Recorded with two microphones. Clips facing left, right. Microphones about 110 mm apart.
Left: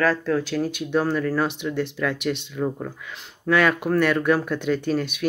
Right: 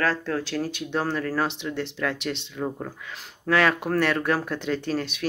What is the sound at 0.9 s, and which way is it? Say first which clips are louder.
Speech: left 4 dB; 30° right (ahead or behind).